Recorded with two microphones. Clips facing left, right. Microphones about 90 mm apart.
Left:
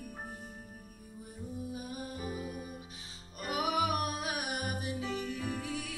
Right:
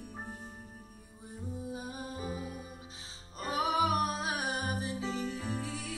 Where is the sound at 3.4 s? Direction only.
30° right (ahead or behind).